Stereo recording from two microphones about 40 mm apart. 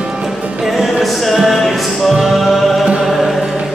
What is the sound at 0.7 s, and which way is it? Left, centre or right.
Music, centre.